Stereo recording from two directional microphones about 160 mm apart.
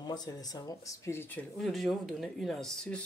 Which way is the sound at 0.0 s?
25° left (ahead or behind).